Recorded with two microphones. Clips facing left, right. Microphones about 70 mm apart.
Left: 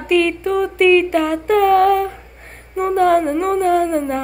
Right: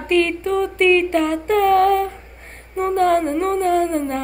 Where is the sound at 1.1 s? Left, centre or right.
Centre.